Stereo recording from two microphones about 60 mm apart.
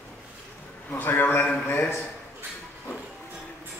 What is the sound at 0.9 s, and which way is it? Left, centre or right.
Speech, left.